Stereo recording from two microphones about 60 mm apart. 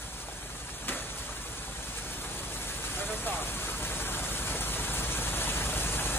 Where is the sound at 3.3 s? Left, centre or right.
Left.